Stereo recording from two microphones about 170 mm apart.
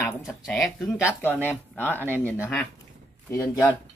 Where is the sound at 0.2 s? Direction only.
Centre (ahead or behind).